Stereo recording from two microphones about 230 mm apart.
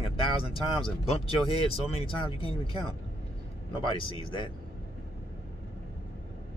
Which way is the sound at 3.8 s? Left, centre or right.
Left.